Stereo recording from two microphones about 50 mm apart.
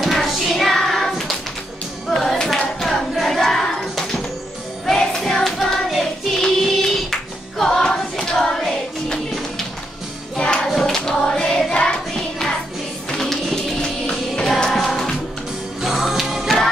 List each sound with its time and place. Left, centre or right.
0.0 s hands: centre
2.0 s music: centre
2.8 s battle cry: centre
4.8 s music: centre
10.3 s music: centre
10.7 s choir: centre
11.7 s music: centre
12.1 s music: centre
15.8 s music: centre